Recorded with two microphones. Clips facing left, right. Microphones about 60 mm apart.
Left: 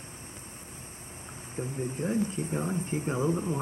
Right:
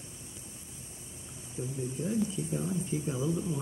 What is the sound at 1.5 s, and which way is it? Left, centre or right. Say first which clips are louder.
Speech: left 3 dB; left.